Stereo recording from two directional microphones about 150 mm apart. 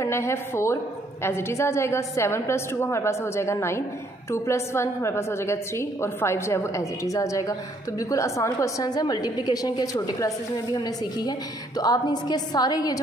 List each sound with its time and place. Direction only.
0.0 s a woman's voice: 20° left (ahead or behind)